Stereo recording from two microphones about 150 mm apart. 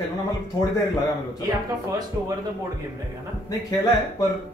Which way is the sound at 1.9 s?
25° right (ahead or behind).